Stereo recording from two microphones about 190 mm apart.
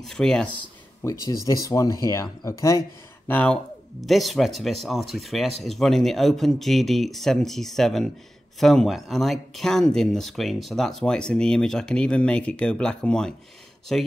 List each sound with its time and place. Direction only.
0.0 s speech: 5° left (ahead or behind)
1.0 s speech: 15° left (ahead or behind)